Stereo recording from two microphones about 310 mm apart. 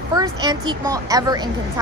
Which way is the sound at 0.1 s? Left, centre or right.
Centre.